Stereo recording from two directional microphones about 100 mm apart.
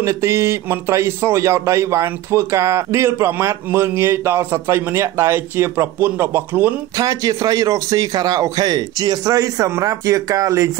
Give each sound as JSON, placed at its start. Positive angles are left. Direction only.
{"t": 0.0, "sound": "speech", "side_deg": -30}
{"t": 7.0, "sound": "a man's voice", "side_deg": -40}